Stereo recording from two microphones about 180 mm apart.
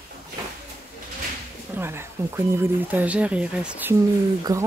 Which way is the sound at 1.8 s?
15° right (ahead or behind).